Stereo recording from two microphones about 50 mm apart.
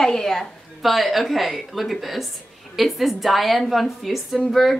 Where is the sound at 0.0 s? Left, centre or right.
Centre.